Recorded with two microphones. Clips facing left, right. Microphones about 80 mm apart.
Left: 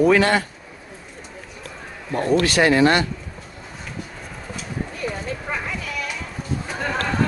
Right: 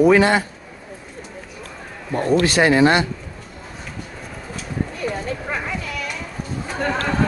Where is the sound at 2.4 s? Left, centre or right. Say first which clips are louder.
Right 1 dB; right.